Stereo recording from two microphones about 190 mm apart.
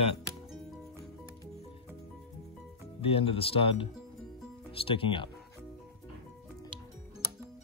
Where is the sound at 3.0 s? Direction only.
30° left (ahead or behind).